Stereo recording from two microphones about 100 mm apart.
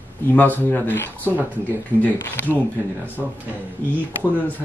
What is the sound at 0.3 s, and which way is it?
Speech, 20° left (ahead or behind).